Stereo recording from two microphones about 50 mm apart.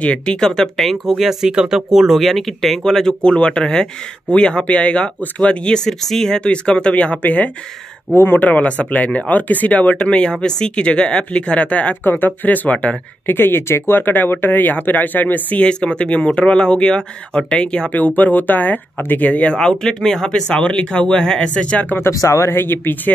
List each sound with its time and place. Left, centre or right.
0.0 s speech: left
0.4 s speech: centre
1.5 s speech: centre
6.4 s speech: centre
12.0 s speech: left
12.3 s speech: left
13.3 s speech: left
13.9 s speech: left
15.6 s speech: left
17.8 s speech: left
19.6 s speech: centre
20.4 s speech: left
22.2 s speech: left
22.5 s speech: left